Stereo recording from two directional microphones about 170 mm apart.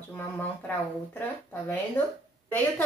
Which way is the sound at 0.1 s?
10° left (ahead or behind).